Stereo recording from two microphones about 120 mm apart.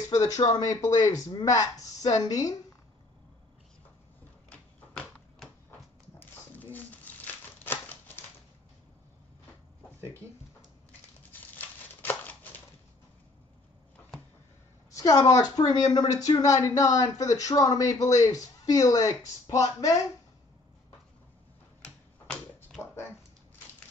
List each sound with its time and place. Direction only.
0.1 s speech: 30° left (ahead or behind)
4.5 s typewriter: 10° left (ahead or behind)
6.1 s crumpling: 15° left (ahead or behind)
11.5 s a sound: 15° left (ahead or behind)
14.9 s a woman's voice: 30° left (ahead or behind)
21.8 s a sound: 5° left (ahead or behind)